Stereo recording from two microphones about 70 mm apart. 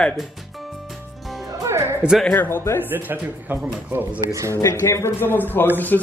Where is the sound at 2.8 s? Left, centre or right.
Right.